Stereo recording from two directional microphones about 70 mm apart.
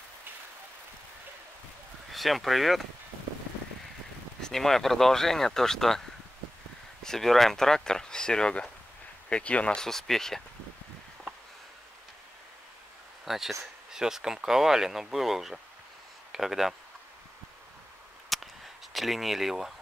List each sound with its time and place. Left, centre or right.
2.1 s speech: centre
4.4 s speech: centre
9.8 s speech: centre
13.2 s speech: centre
18.3 s a sound: centre
18.9 s speech: centre